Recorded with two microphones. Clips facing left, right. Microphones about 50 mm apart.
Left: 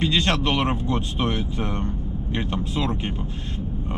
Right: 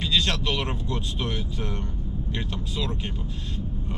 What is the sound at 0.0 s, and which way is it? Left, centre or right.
Speech, left.